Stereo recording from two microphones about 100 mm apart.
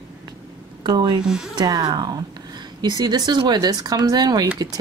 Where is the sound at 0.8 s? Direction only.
45° right (ahead or behind).